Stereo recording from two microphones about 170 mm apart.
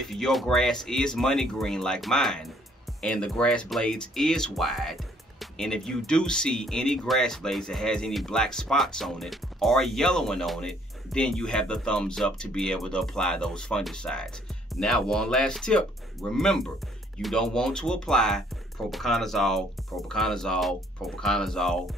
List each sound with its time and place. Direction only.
0.0 s speech: centre (ahead or behind)